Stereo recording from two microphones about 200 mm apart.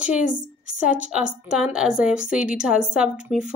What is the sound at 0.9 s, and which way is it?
Speech, 5° right (ahead or behind).